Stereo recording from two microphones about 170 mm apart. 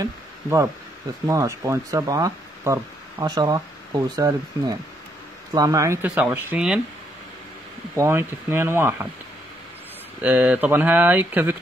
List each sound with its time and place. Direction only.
0.0 s speech: 15° right (ahead or behind)
6.0 s speech: 5° right (ahead or behind)
7.9 s speech: 15° right (ahead or behind)
10.2 s speech: 10° right (ahead or behind)